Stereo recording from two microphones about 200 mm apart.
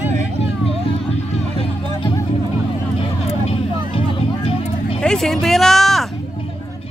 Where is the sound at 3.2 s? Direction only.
30° left (ahead or behind).